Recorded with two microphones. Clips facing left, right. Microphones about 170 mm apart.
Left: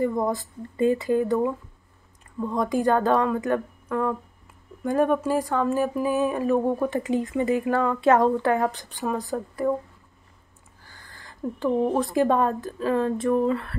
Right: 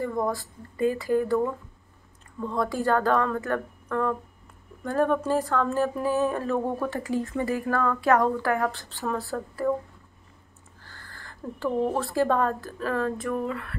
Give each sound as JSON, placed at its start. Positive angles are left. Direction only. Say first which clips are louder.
{"t": 0.0, "sound": "speech", "louder": "left 3 dB", "side_deg": 20}
{"t": 10.8, "sound": "speech", "louder": "right 1 dB", "side_deg": 15}